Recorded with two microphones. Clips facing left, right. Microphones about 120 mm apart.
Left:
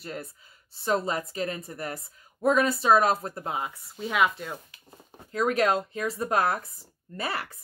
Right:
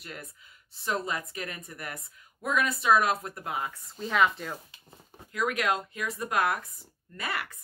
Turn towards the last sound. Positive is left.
turn(degrees=30)  # may be behind; listen again after turning